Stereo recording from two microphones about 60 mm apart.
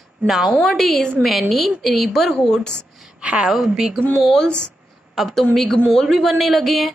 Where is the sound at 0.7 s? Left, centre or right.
Centre.